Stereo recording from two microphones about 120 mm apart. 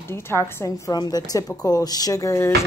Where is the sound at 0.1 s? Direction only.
20° left (ahead or behind).